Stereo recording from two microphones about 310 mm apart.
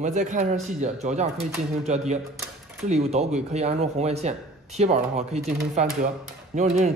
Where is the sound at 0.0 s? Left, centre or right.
Right.